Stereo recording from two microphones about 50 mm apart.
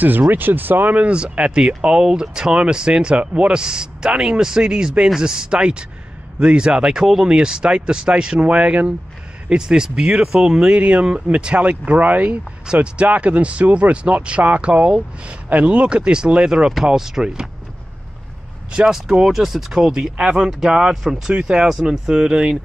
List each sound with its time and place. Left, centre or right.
0.0 s speech: right; by 10.7 s centre
10.7 s speech: right
18.7 s speech: centre
21.3 s speech: centre